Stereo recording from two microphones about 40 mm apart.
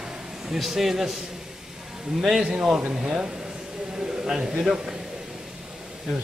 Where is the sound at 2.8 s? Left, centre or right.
Right.